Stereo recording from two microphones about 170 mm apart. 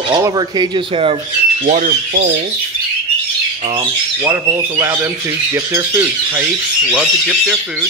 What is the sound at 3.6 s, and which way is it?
Speech, 20° right (ahead or behind).